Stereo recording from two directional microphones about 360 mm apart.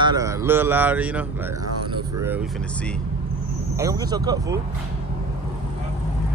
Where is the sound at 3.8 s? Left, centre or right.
Centre.